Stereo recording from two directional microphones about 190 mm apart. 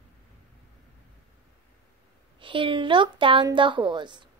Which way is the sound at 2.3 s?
25° right (ahead or behind).